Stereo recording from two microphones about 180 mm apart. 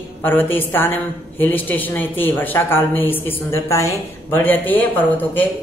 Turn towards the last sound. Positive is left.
turn(degrees=10)  # may be behind; listen again after turning